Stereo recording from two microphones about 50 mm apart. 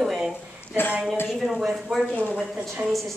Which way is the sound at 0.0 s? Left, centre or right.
Centre.